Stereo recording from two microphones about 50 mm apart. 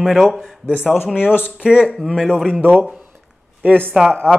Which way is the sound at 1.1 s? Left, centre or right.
Left.